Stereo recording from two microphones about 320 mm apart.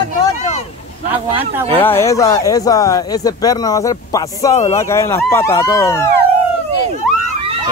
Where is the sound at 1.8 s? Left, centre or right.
Centre.